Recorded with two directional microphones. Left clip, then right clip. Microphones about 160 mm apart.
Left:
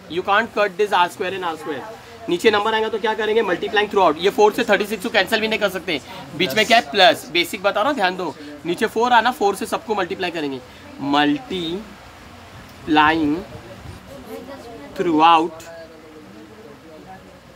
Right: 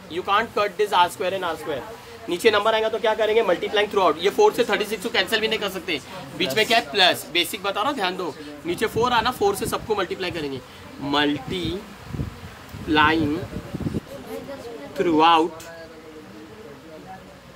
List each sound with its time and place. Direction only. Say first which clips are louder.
0.1 s speech: left 3 dB; 55° left (ahead or behind)
12.9 s speech: left 3 dB; 55° left (ahead or behind)
15.0 s speech: left 3 dB; 55° left (ahead or behind)